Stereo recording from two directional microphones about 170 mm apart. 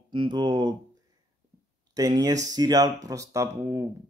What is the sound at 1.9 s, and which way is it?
Speech, 20° right (ahead or behind).